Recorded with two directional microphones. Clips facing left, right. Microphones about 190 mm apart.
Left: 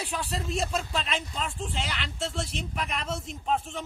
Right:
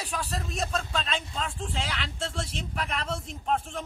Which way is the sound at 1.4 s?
Centre (ahead or behind).